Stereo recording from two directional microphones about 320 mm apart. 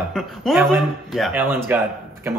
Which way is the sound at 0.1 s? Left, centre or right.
Centre.